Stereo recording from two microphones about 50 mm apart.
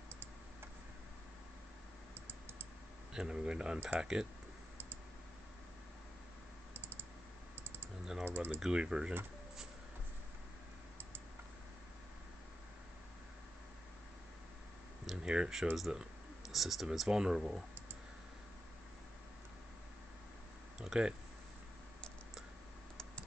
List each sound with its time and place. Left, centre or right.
2.1 s typing: right
3.1 s speech: centre
6.7 s typing: right
8.0 s typing: centre
8.3 s typing: right
8.5 s speech: centre
15.2 s speech: centre
20.8 s speech: centre